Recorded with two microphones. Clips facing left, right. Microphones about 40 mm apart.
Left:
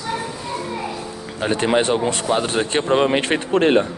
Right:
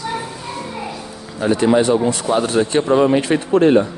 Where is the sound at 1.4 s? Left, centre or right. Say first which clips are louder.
Right 4 dB; left.